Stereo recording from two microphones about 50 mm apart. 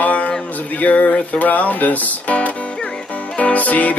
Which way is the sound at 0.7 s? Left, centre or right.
Left.